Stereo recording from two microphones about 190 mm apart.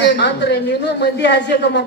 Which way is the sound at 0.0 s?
65° left (ahead or behind).